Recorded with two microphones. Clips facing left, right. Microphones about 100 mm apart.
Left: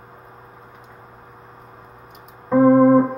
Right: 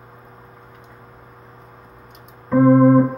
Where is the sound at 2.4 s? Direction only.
20° left (ahead or behind).